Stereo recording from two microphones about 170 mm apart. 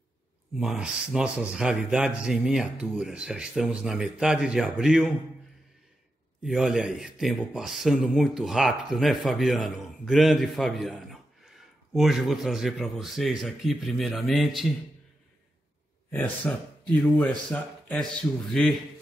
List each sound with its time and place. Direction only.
0.6 s speech: 5° right (ahead or behind)
6.4 s speech: centre (ahead or behind)
16.1 s speech: 10° left (ahead or behind)